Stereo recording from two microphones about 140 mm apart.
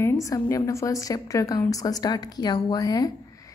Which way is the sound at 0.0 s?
20° left (ahead or behind).